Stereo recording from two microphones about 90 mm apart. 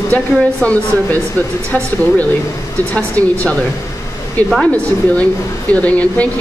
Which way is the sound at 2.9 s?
15° left (ahead or behind).